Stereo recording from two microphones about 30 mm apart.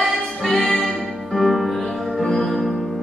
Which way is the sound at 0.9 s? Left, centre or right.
Centre.